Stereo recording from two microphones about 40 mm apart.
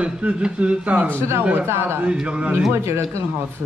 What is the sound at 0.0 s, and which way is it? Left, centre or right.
Speech, right.